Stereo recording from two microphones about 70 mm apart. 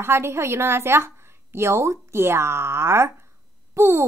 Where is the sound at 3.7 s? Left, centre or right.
Right.